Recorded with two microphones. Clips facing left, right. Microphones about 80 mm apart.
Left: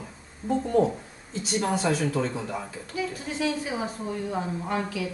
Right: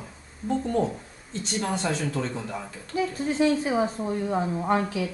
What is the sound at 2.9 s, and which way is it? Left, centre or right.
Speech, right.